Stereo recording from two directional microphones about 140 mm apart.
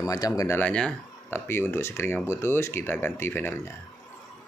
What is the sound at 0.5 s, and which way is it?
Speech, 5° left (ahead or behind).